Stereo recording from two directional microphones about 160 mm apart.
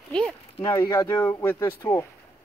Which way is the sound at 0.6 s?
25° left (ahead or behind).